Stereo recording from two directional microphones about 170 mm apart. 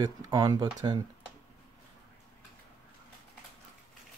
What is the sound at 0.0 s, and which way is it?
Speech, 25° right (ahead or behind).